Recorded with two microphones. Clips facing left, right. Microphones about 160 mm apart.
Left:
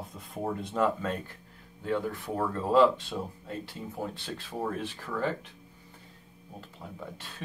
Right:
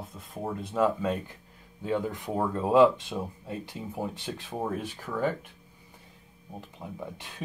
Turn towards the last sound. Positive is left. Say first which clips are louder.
# right 3 dB
turn(degrees=-15)  # may be behind; listen again after turning